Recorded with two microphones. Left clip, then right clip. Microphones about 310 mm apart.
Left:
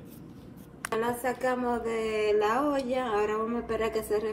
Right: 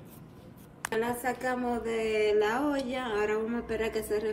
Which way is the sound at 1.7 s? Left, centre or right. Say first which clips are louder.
Left 1 dB; centre.